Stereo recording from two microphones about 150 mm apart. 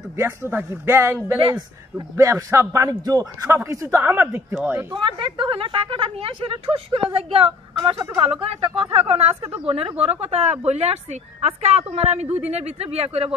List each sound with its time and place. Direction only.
0.2 s speech: 15° right (ahead or behind)
1.4 s a man's voice: 30° right (ahead or behind)
4.9 s a woman's voice: 30° right (ahead or behind)